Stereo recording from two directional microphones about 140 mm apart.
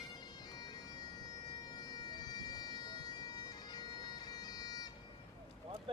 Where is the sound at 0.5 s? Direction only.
30° left (ahead or behind).